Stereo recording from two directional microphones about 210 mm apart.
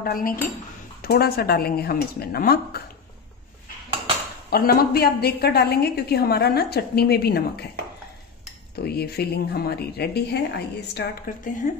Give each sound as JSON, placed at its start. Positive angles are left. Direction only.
{"t": 0.0, "sound": "a woman's voice", "side_deg": 45}
{"t": 4.5, "sound": "a woman's voice", "side_deg": 45}
{"t": 8.7, "sound": "a woman's voice", "side_deg": 50}
{"t": 11.0, "sound": "speech", "side_deg": 40}